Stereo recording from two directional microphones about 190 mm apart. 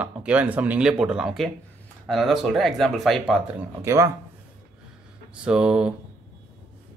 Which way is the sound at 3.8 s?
15° right (ahead or behind).